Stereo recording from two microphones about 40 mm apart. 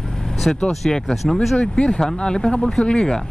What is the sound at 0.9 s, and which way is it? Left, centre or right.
Speech, centre.